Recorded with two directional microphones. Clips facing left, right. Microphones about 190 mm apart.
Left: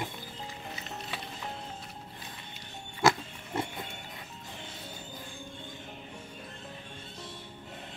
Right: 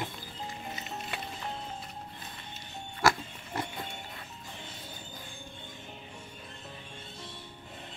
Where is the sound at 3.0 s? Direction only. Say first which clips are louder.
Left 2 dB; 20° left (ahead or behind).